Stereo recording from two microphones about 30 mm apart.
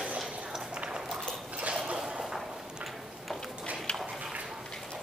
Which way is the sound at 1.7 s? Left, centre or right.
Right.